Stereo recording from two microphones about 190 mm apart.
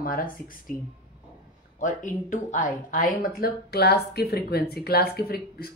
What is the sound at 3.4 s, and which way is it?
Speech, 60° left (ahead or behind).